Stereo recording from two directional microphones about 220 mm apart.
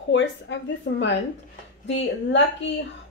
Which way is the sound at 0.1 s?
55° left (ahead or behind).